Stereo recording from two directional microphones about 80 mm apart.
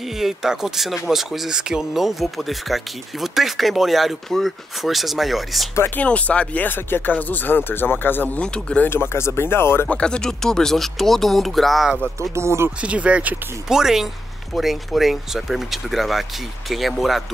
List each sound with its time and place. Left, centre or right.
0.2 s speech: centre
5.9 s speech: centre
8.4 s speech: centre
8.8 s speech: left
9.8 s speech: centre
12.2 s speech: right
12.8 s speech: centre
13.7 s speech: centre